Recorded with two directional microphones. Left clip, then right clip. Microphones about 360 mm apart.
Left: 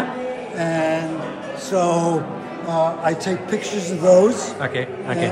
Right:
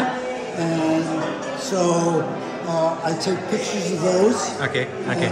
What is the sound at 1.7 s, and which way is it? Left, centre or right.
A man's voice, left.